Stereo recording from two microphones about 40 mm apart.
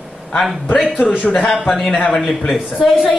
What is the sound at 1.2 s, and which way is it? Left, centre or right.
Speech, left.